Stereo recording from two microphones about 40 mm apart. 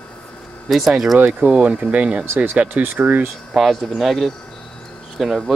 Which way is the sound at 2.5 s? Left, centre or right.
Right.